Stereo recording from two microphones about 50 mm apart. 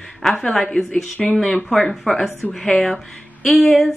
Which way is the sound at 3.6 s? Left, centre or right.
Centre.